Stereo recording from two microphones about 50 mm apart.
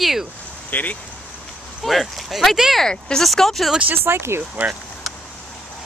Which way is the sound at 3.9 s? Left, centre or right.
Right.